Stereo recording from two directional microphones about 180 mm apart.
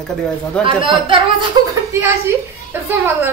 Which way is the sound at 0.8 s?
25° right (ahead or behind).